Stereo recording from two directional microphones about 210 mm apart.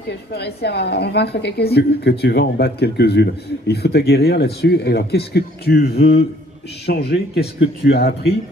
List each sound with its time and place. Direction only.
0.3 s a woman's voice: 50° left (ahead or behind)